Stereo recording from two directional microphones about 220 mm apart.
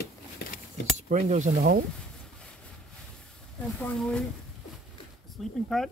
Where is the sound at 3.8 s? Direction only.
5° left (ahead or behind).